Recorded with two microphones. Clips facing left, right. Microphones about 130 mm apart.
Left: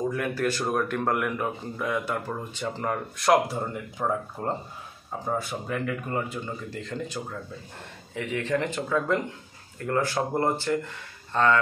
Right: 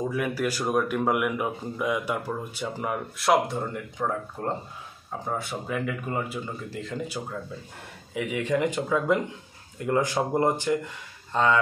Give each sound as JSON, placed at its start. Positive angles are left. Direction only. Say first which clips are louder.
{"t": 0.1, "sound": "speech", "louder": "even", "side_deg": -10}